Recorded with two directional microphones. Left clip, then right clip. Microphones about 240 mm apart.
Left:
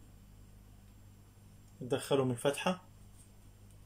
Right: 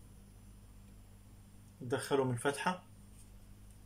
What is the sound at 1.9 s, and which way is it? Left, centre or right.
Speech, centre.